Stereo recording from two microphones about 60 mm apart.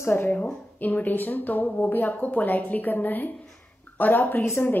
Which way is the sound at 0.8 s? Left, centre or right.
Left.